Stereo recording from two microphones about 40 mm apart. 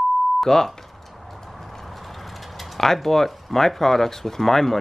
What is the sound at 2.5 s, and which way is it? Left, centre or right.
Speech, centre.